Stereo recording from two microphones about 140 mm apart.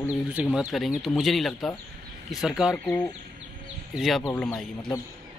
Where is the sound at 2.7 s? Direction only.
15° left (ahead or behind).